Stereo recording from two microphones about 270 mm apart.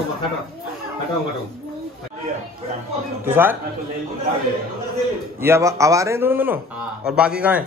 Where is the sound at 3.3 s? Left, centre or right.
Centre.